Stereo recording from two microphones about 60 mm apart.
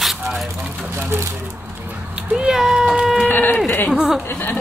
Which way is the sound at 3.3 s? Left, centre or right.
Left.